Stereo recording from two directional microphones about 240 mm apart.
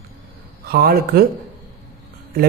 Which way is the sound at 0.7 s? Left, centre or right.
Right.